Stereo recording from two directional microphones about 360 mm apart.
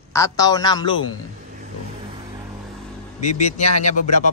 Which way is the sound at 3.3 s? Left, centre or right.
Centre.